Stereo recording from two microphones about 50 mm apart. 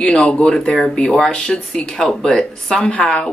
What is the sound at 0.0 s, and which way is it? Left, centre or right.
Speech, centre.